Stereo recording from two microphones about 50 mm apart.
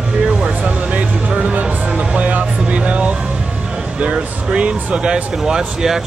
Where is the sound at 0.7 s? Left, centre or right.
Right.